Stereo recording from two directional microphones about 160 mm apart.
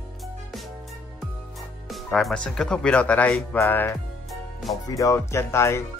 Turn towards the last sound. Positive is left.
turn(degrees=15)  # may be behind; listen again after turning